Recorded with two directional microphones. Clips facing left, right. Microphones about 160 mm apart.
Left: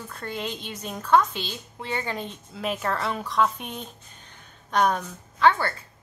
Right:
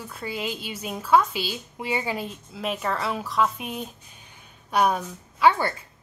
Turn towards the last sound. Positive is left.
turn(degrees=-10)  # may be behind; listen again after turning